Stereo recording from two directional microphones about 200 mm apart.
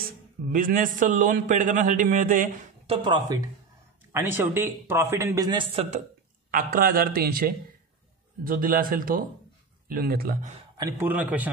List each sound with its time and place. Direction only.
0.0 s a man's voice: 45° right (ahead or behind)
2.9 s a man's voice: 25° right (ahead or behind)
6.5 s a man's voice: 45° right (ahead or behind)
10.8 s a man's voice: 10° right (ahead or behind)